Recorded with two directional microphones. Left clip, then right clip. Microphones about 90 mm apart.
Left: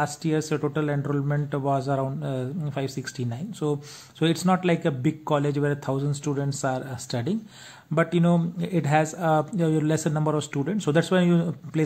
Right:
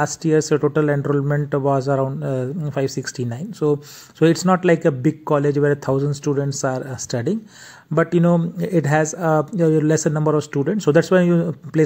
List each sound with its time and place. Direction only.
0.0 s speech: 40° right (ahead or behind)
5.2 s speech: 25° right (ahead or behind)
6.2 s speech: 25° right (ahead or behind)
6.6 s speech: 40° right (ahead or behind)